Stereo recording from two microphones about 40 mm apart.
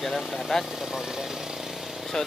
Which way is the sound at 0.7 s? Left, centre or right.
Centre.